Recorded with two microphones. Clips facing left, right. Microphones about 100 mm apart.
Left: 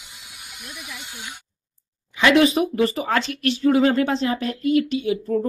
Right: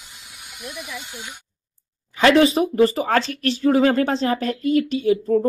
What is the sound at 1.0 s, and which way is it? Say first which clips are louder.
Speech: right 1 dB; 15° right (ahead or behind).